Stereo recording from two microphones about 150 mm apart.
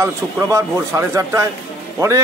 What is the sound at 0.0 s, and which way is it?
A man's voice, 20° right (ahead or behind).